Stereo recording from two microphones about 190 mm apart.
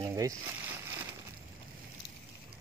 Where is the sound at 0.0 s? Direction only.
15° right (ahead or behind).